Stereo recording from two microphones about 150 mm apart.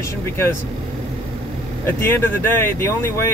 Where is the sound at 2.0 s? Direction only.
15° left (ahead or behind).